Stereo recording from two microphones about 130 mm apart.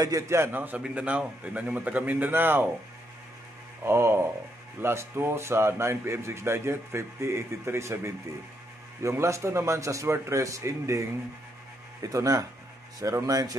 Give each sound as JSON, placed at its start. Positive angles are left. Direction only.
{"t": 0.0, "sound": "a man's voice", "side_deg": -25}
{"t": 3.8, "sound": "a man's voice", "side_deg": -20}